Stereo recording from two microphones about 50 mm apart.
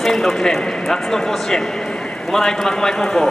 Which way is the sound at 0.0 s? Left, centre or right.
Centre.